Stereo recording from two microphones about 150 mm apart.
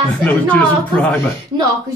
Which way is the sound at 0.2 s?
10° left (ahead or behind).